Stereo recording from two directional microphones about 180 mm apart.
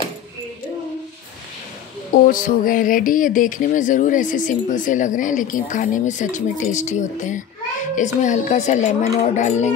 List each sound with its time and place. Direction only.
2.2 s a woman's voice: 50° left (ahead or behind)